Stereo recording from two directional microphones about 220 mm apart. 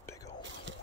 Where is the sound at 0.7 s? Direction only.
55° right (ahead or behind).